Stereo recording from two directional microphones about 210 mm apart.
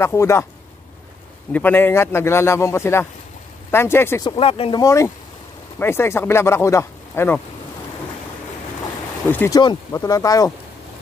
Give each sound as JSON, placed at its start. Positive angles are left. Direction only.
{"t": 0.0, "sound": "speech", "side_deg": 15}
{"t": 1.5, "sound": "speech", "side_deg": 10}
{"t": 4.4, "sound": "speech", "side_deg": 25}
{"t": 9.3, "sound": "speech", "side_deg": 10}